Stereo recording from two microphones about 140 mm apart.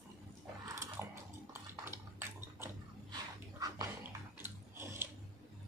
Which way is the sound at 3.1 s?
25° right (ahead or behind).